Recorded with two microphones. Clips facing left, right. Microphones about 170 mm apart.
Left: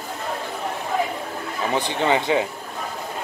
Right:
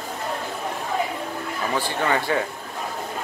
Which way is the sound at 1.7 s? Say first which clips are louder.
Left 3 dB; 20° left (ahead or behind).